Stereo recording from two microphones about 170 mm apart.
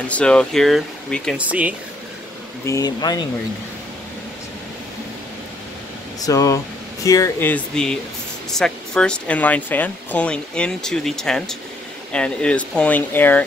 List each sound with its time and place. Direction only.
0.1 s speech: 5° left (ahead or behind)
1.4 s speech: 10° right (ahead or behind)
2.6 s speech: 20° left (ahead or behind)
6.2 s speech: 20° left (ahead or behind)